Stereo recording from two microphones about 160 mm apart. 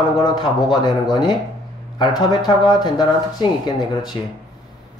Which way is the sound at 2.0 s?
25° left (ahead or behind).